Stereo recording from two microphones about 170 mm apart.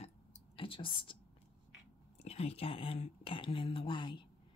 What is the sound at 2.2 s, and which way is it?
Speech, 35° left (ahead or behind).